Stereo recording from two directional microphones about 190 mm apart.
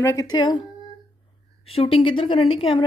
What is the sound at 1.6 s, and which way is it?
A woman's voice, 30° left (ahead or behind).